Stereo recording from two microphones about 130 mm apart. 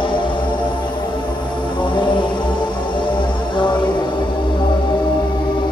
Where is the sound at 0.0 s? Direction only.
40° left (ahead or behind).